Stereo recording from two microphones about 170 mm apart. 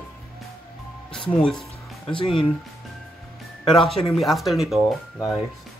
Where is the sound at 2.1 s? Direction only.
30° left (ahead or behind).